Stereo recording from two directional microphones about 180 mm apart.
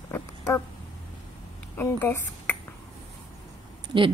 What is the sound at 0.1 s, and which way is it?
Dog, 15° left (ahead or behind).